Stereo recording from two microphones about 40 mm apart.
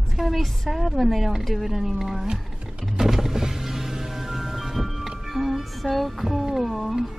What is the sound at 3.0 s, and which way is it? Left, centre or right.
Music, centre.